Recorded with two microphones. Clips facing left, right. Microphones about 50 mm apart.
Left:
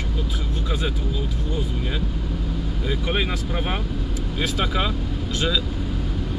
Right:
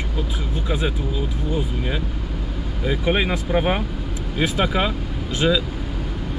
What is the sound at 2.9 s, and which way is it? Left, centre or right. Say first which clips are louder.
Speech: right 5 dB; centre.